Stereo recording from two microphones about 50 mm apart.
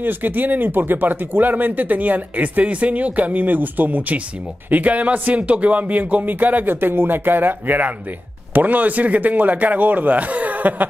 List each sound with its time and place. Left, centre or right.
0.0 s speech: right